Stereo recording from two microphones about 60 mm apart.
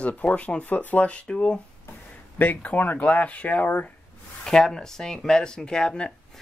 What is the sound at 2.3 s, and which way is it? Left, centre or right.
Speech, left.